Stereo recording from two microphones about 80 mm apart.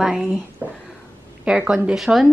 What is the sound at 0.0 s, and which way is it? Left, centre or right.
Speech, centre.